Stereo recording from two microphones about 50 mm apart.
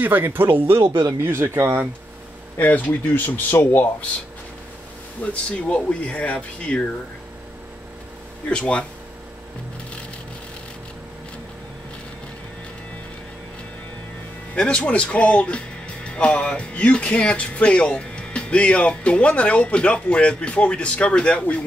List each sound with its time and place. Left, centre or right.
0.0 s speech: right
2.5 s speech: left
5.2 s speech: left
8.5 s speech: left
14.5 s speech: left